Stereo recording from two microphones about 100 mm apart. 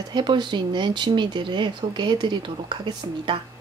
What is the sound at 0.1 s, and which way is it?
Speech, 50° right (ahead or behind).